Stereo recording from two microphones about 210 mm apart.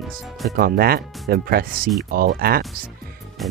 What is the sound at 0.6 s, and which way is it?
Speech, 45° right (ahead or behind).